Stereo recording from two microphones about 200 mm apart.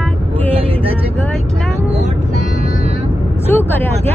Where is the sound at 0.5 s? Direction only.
30° right (ahead or behind).